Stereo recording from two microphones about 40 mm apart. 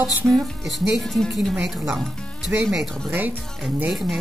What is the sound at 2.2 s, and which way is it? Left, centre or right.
Music, left.